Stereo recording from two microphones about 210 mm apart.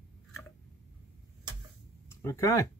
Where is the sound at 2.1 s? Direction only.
15° left (ahead or behind).